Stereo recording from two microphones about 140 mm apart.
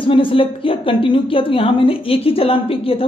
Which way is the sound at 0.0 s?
40° left (ahead or behind).